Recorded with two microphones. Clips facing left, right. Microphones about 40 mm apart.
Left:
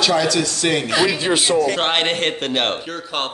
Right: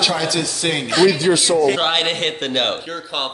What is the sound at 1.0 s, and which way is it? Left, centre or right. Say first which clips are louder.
Speech: right 3 dB; left.